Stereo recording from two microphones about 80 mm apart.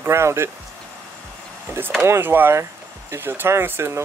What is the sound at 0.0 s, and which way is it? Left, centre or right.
Speech, right.